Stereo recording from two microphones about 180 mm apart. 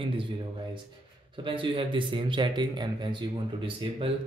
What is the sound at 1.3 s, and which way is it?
Speech, 30° right (ahead or behind).